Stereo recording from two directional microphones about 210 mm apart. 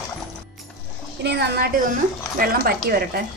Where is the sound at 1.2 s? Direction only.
50° right (ahead or behind).